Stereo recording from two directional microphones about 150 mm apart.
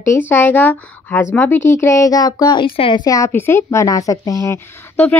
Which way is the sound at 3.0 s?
20° left (ahead or behind).